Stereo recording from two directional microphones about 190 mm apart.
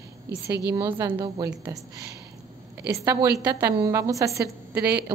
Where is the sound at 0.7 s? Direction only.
15° right (ahead or behind).